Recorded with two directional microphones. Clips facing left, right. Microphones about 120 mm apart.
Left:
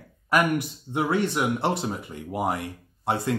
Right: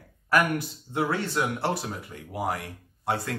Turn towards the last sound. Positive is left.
turn(degrees=20)  # may be behind; listen again after turning